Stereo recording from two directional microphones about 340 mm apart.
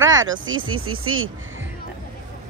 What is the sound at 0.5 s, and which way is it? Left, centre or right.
Speech, right.